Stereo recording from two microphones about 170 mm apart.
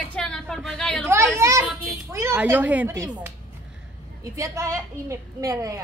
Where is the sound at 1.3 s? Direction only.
15° right (ahead or behind).